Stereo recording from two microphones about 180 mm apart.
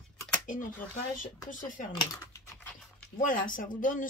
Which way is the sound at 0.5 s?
45° left (ahead or behind).